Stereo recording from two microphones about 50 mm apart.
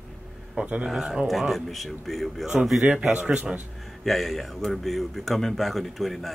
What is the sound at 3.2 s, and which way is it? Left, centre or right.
Speech, right.